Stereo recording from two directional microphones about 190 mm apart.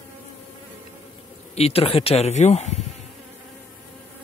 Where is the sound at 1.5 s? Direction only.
30° left (ahead or behind).